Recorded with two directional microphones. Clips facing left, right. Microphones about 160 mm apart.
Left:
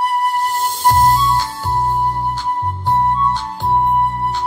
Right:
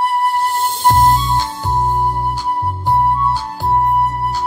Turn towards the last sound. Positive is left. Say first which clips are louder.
# right 1 dB
turn(degrees=-5)  # may be behind; listen again after turning